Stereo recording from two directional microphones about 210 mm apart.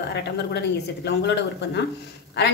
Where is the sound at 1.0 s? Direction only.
55° left (ahead or behind).